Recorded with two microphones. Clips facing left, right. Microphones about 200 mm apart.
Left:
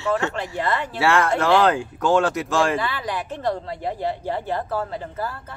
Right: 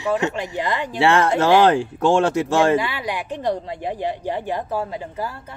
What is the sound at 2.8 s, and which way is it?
A woman's voice, 10° right (ahead or behind).